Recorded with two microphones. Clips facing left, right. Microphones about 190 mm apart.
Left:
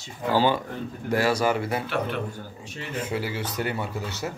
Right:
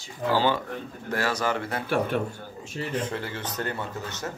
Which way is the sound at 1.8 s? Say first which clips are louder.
Right 3 dB; 45° right (ahead or behind).